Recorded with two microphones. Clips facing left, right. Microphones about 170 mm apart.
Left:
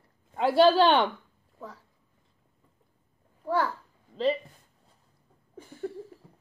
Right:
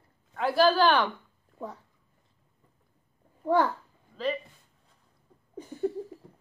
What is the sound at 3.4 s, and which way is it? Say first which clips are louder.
Speech: right 3 dB; 20° right (ahead or behind).